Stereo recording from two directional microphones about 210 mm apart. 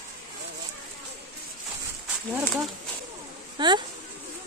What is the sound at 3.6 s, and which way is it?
Speech, 20° right (ahead or behind).